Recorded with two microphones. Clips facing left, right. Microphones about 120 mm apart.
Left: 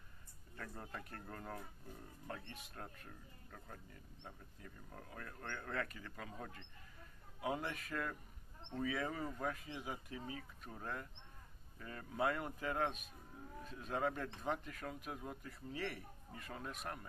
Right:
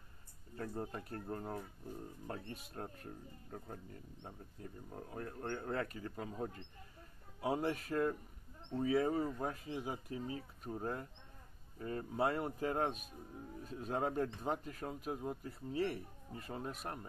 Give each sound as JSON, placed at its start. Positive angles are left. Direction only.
{"t": 0.6, "sound": "speech", "side_deg": -30}